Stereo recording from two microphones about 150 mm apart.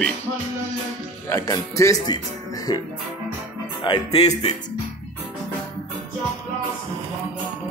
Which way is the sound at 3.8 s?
35° left (ahead or behind).